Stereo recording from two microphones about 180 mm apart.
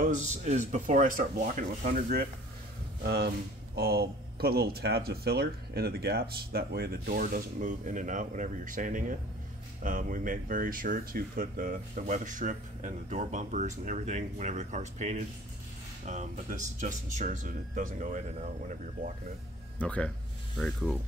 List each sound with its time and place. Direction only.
0.0 s speech: 40° right (ahead or behind)
19.8 s speech: 5° left (ahead or behind)